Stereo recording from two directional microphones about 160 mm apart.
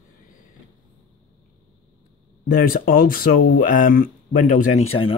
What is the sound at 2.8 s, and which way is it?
Speech, 60° left (ahead or behind).